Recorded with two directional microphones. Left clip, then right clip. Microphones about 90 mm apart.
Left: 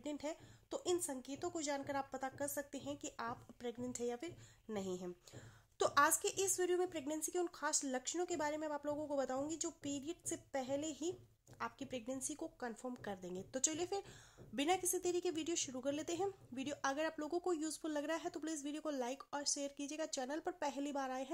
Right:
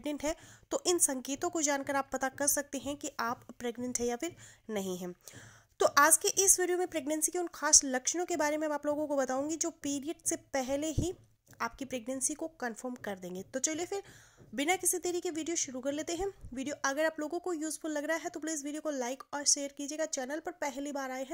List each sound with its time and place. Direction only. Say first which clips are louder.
0.0 s a woman's voice: right 9 dB; 55° right (ahead or behind); by 2.4 s 75° right (ahead or behind)
2.4 s speech: right 10 dB; 55° right (ahead or behind)
3.2 s speech: right 10 dB; 60° right (ahead or behind)
4.6 s a woman's voice: right 7 dB; 45° right (ahead or behind)
8.0 s speech: right 8 dB; 50° right (ahead or behind); by 21.3 s 20° right (ahead or behind)